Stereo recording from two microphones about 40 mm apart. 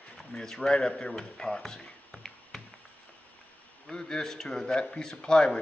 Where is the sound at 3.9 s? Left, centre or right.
Centre.